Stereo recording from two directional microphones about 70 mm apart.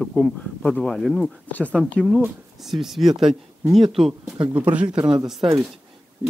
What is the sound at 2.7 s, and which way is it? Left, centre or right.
Speech, centre.